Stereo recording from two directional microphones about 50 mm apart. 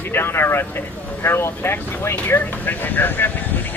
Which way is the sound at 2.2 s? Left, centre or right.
Left.